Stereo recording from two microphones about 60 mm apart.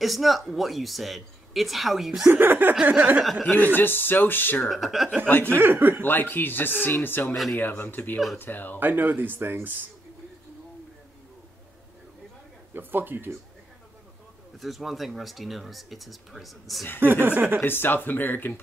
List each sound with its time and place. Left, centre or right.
0.0 s speech: centre
2.3 s speech: right
2.8 s a sound: right
3.4 s speech: left
4.6 s speech: centre
5.5 s speech: right
6.0 s speech: left
8.7 s speech: right
12.7 s speech: right
14.6 s speech: centre
17.0 s speech: right
17.6 s speech: left